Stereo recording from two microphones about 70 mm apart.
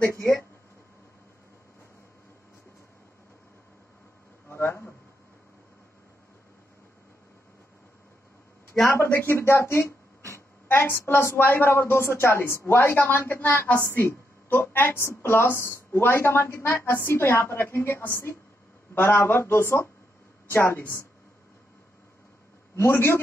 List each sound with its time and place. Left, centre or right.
4.5 s a sound: left
8.8 s a woman's voice: left
22.8 s a woman's voice: left